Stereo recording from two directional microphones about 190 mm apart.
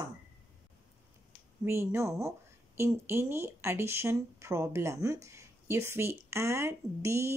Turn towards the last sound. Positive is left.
turn(degrees=-15)  # may be behind; listen again after turning